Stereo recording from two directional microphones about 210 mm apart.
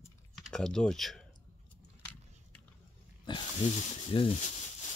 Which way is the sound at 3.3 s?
20° left (ahead or behind).